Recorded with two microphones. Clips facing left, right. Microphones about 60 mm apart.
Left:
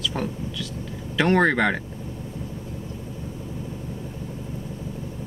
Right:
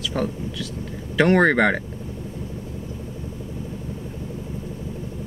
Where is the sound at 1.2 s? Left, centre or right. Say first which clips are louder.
Right 3 dB; right.